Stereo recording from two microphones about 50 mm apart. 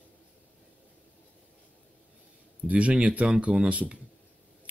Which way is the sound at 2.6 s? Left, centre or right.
Right.